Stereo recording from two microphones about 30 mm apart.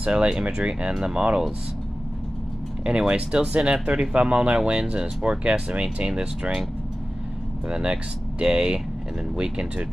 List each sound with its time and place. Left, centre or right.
0.0 s speech: right
0.6 s speech: right
3.1 s speech: right
7.7 s speech: right